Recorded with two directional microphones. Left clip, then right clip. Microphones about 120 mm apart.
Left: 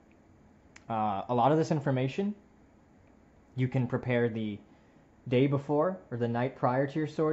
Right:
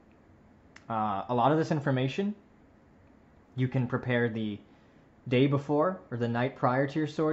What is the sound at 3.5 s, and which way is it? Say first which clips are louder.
Speech: right 1 dB; 15° left (ahead or behind).